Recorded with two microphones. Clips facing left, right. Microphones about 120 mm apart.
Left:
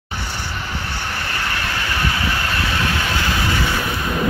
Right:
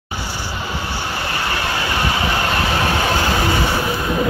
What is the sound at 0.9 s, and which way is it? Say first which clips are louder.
Vehicle: right 3 dB; 20° right (ahead or behind).